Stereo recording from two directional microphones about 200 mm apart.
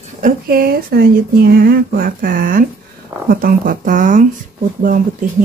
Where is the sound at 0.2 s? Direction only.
45° right (ahead or behind).